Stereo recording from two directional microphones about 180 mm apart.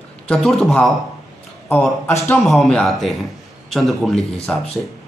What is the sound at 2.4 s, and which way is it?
Speech, centre (ahead or behind).